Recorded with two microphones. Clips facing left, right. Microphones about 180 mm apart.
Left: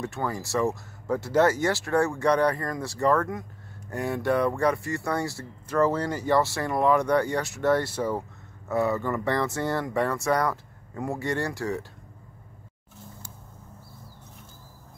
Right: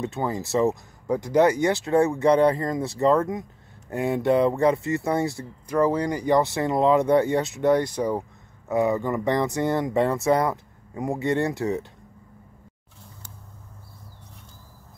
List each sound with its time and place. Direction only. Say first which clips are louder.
0.0 s speech: right 3 dB; 20° right (ahead or behind)